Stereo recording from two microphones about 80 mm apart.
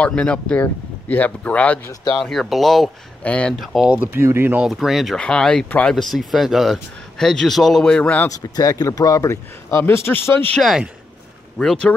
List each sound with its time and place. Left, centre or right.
0.0 s speech: centre
2.1 s speech: centre
3.2 s speech: centre
3.5 s speech: centre
4.0 s speech: right
4.6 s speech: centre
8.3 s a man's voice: left
11.5 s speech: centre